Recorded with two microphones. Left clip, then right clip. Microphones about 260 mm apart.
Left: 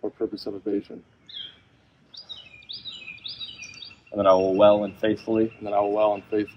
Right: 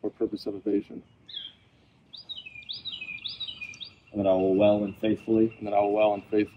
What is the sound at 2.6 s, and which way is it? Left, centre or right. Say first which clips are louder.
Bird: right 1 dB; right.